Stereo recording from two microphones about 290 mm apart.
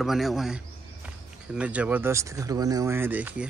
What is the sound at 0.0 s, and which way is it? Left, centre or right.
Speech, centre.